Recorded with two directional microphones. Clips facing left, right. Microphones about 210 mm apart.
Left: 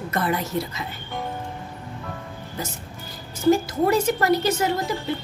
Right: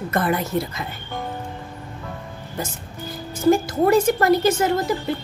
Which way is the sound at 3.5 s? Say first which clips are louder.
Right 3 dB; 50° right (ahead or behind).